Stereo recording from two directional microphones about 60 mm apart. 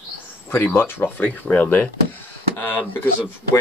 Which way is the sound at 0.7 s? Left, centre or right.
Left.